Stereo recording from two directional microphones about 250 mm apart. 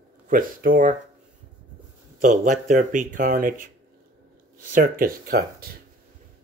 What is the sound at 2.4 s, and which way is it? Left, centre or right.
Speech, right.